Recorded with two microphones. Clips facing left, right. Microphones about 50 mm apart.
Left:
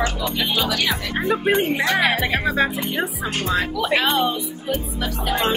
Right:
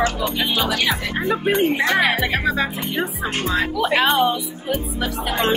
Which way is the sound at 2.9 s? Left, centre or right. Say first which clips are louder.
Right 1 dB; right.